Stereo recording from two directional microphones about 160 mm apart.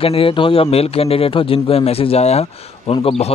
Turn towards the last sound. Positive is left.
turn(degrees=35)  # may be behind; listen again after turning